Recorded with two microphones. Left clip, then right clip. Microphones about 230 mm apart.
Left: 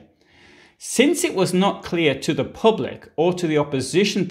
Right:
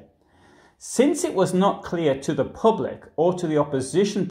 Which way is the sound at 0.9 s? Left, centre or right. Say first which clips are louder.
Left 2 dB; left.